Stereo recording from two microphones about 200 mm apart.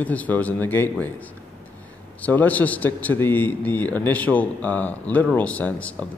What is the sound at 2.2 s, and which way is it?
Speech, 10° left (ahead or behind).